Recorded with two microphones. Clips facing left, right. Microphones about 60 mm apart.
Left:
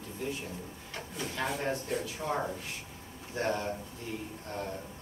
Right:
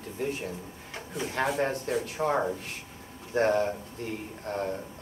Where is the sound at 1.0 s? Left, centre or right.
Right.